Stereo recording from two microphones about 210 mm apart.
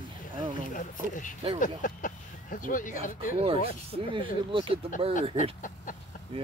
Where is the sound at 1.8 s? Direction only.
40° left (ahead or behind).